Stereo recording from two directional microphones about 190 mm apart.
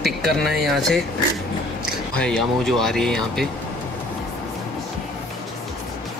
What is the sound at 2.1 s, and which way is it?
Speech, 5° left (ahead or behind).